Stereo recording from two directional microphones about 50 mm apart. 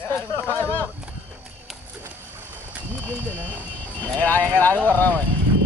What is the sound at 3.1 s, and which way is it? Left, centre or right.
Speech, left.